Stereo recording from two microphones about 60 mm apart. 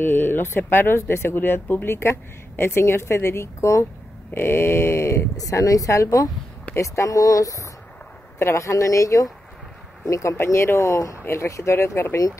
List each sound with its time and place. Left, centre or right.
0.0 s a woman's voice: left
4.3 s a woman's voice: left
5.4 s a woman's voice: left